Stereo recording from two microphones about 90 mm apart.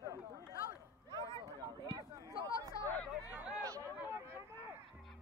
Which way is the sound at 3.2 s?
15° right (ahead or behind).